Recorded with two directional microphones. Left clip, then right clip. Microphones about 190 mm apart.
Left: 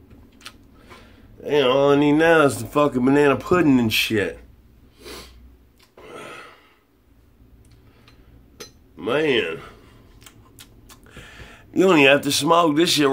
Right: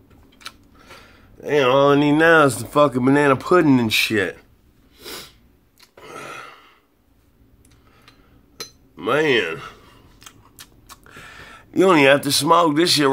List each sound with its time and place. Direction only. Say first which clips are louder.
0.4 s biting: right 4 dB; 5° right (ahead or behind)
1.4 s speech: right 2 dB; 5° right (ahead or behind)
5.8 s burping: right 2 dB; centre (ahead or behind)
8.5 s cutlery: right 4 dB; centre (ahead or behind)
10.2 s a sound: right 4 dB; 5° right (ahead or behind)